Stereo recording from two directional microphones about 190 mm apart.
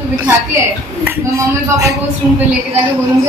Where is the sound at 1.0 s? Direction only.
15° right (ahead or behind).